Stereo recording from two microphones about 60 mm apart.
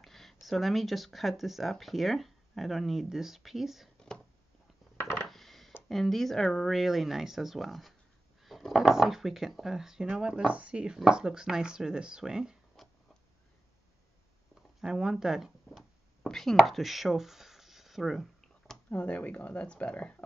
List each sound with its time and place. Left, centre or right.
0.0 s speech: centre
5.3 s a sound: centre
5.9 s speech: centre
12.8 s tick-tock: centre
14.8 s a sound: centre
18.9 s speech: left